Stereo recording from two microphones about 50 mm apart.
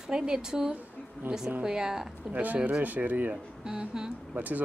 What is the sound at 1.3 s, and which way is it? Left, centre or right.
Speech, right.